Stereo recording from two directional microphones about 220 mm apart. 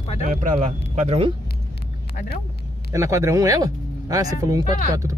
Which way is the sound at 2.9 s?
15° right (ahead or behind).